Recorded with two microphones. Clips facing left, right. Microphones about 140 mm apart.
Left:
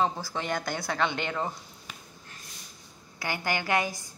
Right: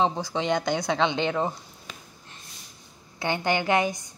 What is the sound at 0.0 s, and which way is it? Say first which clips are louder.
Speech: right 4 dB; 20° right (ahead or behind).